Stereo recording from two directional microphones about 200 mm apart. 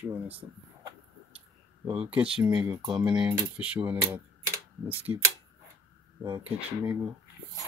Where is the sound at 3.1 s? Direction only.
5° right (ahead or behind).